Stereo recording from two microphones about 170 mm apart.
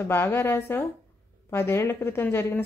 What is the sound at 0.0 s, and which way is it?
A woman's voice, 15° left (ahead or behind).